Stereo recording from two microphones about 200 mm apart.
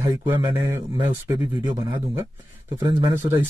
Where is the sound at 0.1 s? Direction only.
20° right (ahead or behind).